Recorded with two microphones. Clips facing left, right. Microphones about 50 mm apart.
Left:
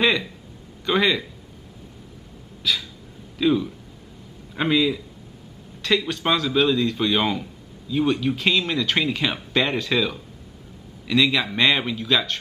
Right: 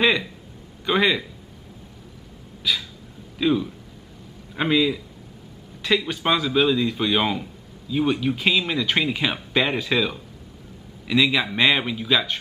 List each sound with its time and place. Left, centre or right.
0.0 s speech: centre
2.6 s a man's voice: centre